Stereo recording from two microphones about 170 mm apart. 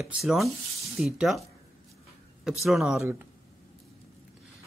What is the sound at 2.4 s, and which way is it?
Speech, centre (ahead or behind).